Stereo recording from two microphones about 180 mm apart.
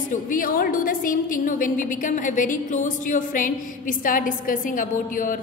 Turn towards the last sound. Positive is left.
turn(degrees=45)  # may be behind; listen again after turning